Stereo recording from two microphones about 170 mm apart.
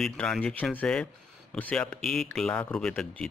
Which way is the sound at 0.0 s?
5° left (ahead or behind).